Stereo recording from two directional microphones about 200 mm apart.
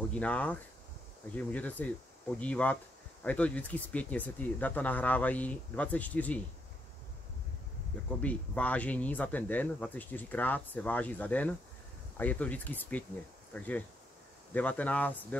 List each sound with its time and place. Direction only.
0.1 s speech: 5° left (ahead or behind)
8.2 s speech: 5° left (ahead or behind)